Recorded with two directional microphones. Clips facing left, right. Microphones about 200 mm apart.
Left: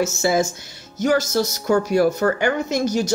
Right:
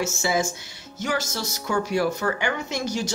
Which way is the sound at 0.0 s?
40° left (ahead or behind).